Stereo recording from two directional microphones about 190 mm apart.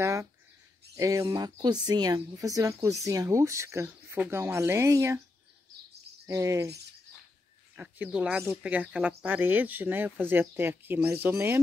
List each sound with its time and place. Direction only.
0.0 s a sound: 15° right (ahead or behind)
0.9 s speech: 15° right (ahead or behind)
6.2 s cricket: 15° right (ahead or behind)
7.7 s speech: 5° right (ahead or behind)